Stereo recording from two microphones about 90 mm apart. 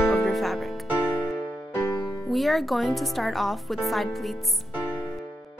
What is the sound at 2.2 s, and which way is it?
Speech, centre (ahead or behind).